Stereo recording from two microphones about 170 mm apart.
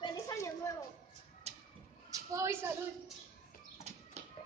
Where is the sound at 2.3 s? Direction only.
15° right (ahead or behind).